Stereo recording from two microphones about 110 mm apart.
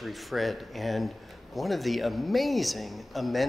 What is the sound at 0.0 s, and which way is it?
Speech, centre (ahead or behind).